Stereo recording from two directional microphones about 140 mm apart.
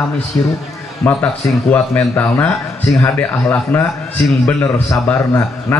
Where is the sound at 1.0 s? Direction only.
15° left (ahead or behind).